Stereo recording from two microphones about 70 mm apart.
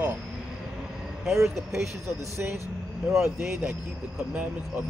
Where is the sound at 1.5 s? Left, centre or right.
Centre.